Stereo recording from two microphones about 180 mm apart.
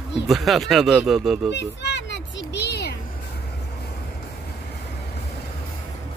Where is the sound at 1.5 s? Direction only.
75° left (ahead or behind).